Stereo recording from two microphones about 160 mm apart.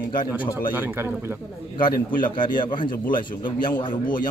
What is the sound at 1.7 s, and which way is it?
A man's voice, 30° left (ahead or behind).